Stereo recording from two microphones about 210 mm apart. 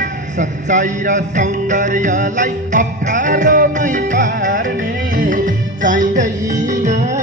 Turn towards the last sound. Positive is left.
turn(degrees=-40)  # may be behind; listen again after turning